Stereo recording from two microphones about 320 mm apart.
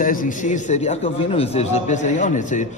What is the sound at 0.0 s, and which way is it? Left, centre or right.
A man's voice, left.